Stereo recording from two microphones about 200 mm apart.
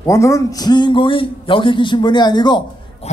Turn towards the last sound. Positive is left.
turn(degrees=20)  # may be behind; listen again after turning